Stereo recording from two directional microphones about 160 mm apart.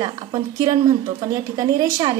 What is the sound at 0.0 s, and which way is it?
A woman's voice, 25° right (ahead or behind).